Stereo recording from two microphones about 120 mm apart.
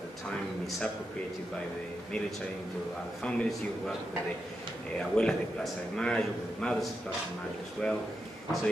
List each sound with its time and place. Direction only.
3.2 s a man's voice: 5° left (ahead or behind)
5.1 s a man's voice: 5° left (ahead or behind)